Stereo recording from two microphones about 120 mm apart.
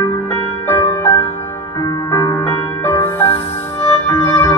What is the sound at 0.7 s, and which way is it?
Music, 20° left (ahead or behind).